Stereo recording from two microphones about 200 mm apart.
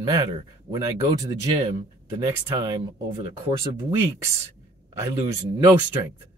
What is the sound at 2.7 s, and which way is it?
Speech, 20° right (ahead or behind).